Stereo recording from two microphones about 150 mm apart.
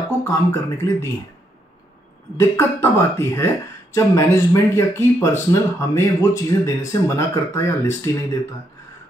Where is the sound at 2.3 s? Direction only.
15° left (ahead or behind).